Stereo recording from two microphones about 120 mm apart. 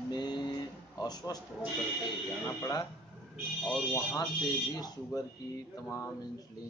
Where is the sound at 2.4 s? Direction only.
30° left (ahead or behind).